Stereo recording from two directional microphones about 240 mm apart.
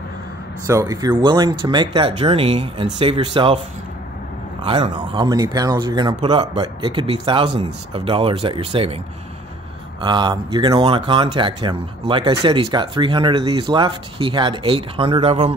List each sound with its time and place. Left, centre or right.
0.7 s speech: centre
4.6 s speech: right
10.0 s speech: centre